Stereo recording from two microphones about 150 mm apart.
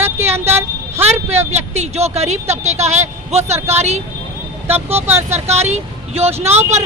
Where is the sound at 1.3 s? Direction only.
45° right (ahead or behind).